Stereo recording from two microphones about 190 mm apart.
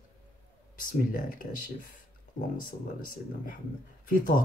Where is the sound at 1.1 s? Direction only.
50° left (ahead or behind).